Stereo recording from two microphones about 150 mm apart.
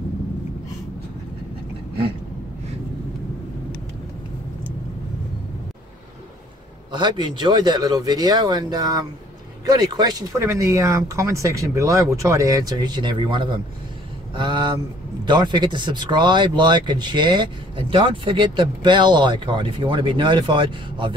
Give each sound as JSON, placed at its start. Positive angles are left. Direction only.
{"t": 6.9, "sound": "speech", "side_deg": -30}
{"t": 14.3, "sound": "a sound", "side_deg": -30}
{"t": 15.2, "sound": "speech", "side_deg": -30}